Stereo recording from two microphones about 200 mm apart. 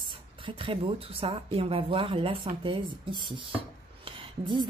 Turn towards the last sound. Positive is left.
turn(degrees=-25)  # may be behind; listen again after turning